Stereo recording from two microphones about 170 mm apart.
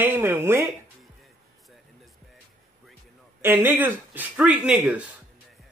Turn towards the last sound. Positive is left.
turn(degrees=-10)  # may be behind; listen again after turning